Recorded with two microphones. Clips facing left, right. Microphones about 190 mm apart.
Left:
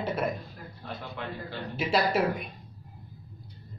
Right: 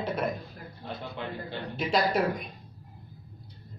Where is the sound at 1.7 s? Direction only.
5° left (ahead or behind).